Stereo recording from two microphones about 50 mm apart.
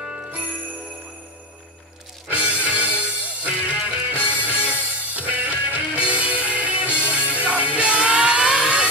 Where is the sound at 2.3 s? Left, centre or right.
Right.